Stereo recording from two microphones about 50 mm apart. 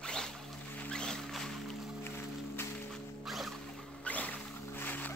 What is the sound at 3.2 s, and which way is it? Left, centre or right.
Zipper, centre.